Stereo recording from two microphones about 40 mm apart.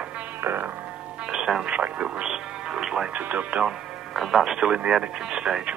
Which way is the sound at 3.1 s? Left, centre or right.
Right.